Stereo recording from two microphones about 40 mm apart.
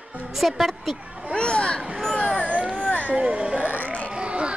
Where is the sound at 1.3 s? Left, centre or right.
Left.